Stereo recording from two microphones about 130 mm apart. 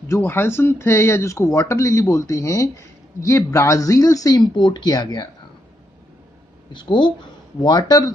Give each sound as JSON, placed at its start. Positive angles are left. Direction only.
{"t": 0.1, "sound": "speech", "side_deg": 20}
{"t": 6.7, "sound": "speech", "side_deg": 35}